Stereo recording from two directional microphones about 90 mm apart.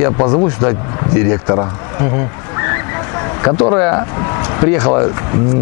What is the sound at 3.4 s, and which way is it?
Speech, 10° left (ahead or behind).